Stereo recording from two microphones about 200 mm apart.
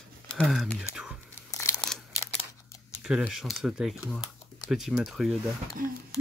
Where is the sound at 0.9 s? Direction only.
5° right (ahead or behind).